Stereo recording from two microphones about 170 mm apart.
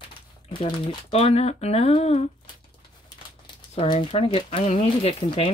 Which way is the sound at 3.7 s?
30° left (ahead or behind).